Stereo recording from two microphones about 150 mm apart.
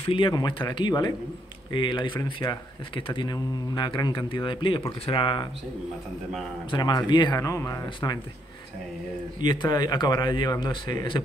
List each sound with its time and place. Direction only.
0.0 s speech: 35° left (ahead or behind)
6.7 s speech: 30° left (ahead or behind)
9.4 s speech: 30° left (ahead or behind)